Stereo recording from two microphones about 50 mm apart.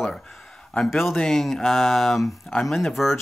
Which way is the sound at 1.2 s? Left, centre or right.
Centre.